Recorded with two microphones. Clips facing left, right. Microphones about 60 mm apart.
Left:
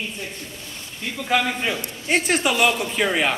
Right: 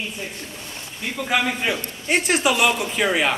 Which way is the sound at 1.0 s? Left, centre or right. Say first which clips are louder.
Even; centre.